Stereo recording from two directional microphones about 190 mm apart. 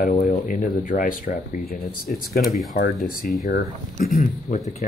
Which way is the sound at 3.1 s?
50° left (ahead or behind).